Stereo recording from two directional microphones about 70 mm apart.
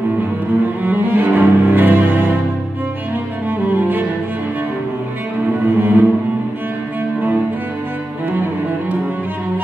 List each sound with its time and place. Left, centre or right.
0.8 s cello: right
3.4 s music: right
5.8 s cello: right